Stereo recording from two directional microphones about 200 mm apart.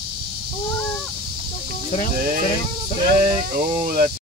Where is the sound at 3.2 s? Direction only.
40° right (ahead or behind).